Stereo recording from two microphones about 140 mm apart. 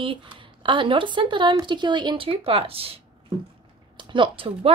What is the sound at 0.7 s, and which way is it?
Speech, 35° right (ahead or behind).